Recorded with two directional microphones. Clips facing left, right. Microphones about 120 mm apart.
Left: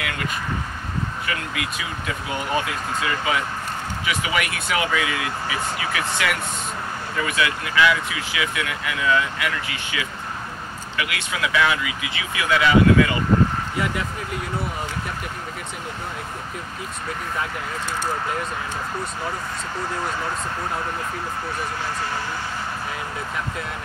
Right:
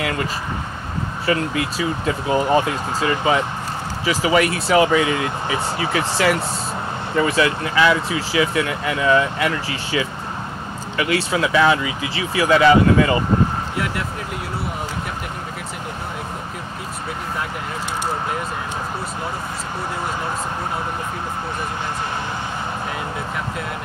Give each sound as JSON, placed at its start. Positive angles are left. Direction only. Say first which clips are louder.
{"t": 0.0, "sound": "vehicle", "louder": "right 5 dB", "side_deg": -30}
{"t": 1.2, "sound": "speech", "louder": "right 8 dB", "side_deg": -30}